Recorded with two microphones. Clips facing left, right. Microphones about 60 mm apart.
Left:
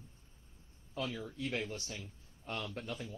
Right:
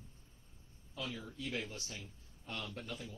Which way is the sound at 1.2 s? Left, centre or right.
Left.